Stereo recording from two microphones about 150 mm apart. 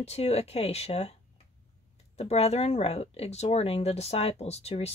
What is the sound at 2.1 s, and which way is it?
Speech, 45° left (ahead or behind).